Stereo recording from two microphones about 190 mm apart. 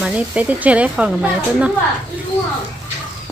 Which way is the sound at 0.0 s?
5° right (ahead or behind).